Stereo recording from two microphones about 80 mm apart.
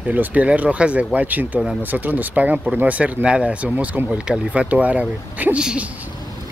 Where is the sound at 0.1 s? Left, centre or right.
Centre.